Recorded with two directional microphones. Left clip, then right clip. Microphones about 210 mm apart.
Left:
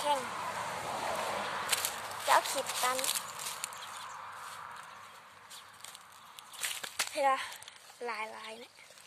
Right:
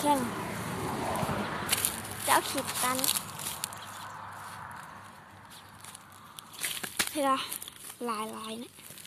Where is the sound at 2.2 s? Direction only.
Centre (ahead or behind).